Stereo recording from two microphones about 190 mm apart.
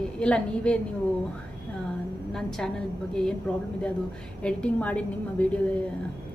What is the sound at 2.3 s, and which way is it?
A woman's voice, 5° left (ahead or behind).